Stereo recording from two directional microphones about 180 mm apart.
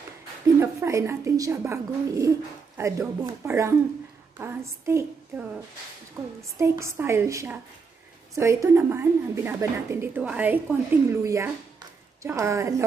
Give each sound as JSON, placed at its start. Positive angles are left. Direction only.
{"t": 0.6, "sound": "a woman's voice", "side_deg": -15}
{"t": 6.4, "sound": "a woman's voice", "side_deg": -15}